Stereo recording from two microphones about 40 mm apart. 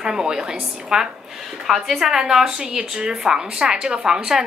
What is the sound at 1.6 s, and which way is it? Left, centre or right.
A woman's voice, centre.